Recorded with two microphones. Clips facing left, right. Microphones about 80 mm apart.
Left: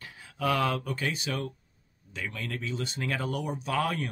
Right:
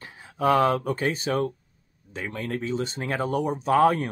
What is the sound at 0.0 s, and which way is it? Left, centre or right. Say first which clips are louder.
Speech: right 6 dB; right.